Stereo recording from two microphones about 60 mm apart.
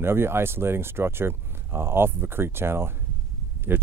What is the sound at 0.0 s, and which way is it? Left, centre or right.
Speech, right.